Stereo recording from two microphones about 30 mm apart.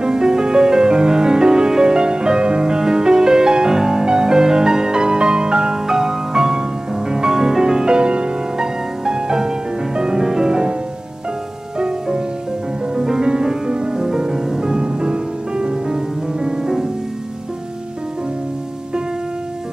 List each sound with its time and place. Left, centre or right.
0.0 s music: right
11.8 s music: right
13.9 s music: centre
14.8 s music: right